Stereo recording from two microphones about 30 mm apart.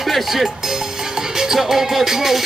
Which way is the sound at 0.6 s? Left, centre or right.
Centre.